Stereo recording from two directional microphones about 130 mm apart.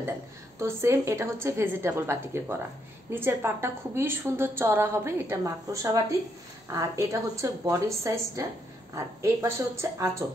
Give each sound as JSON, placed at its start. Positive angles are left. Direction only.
{"t": 0.6, "sound": "a woman's voice", "side_deg": -20}